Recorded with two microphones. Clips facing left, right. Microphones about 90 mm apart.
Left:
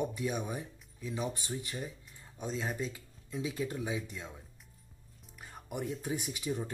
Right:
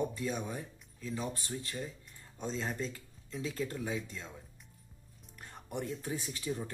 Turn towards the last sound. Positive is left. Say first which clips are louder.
# left 2 dB
turn(degrees=15)  # may be behind; listen again after turning